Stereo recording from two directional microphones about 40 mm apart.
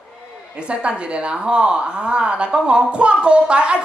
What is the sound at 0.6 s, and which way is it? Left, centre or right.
A woman's voice, right.